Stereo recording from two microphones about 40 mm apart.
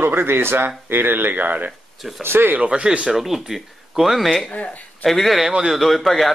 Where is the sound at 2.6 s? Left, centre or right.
Right.